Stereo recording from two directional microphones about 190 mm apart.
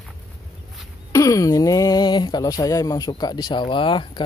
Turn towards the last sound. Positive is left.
turn(degrees=25)  # may be behind; listen again after turning